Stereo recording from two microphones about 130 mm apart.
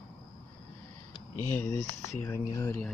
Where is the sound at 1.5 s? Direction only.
15° left (ahead or behind).